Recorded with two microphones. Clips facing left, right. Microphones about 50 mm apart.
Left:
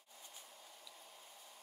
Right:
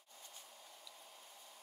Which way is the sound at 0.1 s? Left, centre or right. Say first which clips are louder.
Even; centre.